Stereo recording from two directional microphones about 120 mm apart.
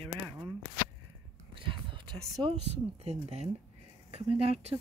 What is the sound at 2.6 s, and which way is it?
Speech, 60° right (ahead or behind).